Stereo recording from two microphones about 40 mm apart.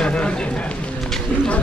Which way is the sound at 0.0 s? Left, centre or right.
Left.